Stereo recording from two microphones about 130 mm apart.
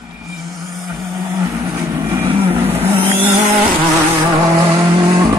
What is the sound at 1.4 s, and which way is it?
Vehicle, 25° right (ahead or behind).